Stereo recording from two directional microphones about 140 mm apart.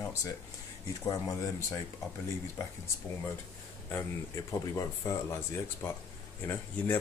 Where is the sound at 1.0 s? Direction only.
25° left (ahead or behind).